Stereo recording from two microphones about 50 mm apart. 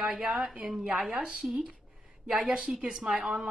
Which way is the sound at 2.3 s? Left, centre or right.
Centre.